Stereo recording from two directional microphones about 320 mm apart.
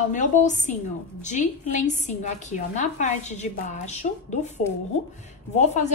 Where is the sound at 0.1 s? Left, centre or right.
Left.